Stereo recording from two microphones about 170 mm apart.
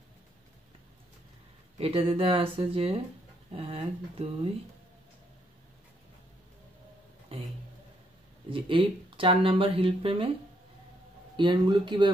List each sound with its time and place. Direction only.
1.8 s speech: 35° right (ahead or behind)
8.5 s speech: 30° right (ahead or behind)
11.3 s speech: 25° right (ahead or behind)